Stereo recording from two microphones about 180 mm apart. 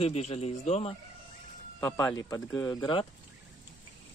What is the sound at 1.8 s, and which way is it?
Speech, 15° left (ahead or behind).